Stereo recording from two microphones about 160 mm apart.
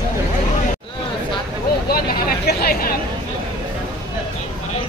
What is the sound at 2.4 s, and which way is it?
Chatter, 70° left (ahead or behind).